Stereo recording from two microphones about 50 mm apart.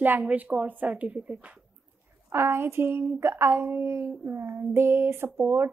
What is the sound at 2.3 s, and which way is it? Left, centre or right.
Speech, right.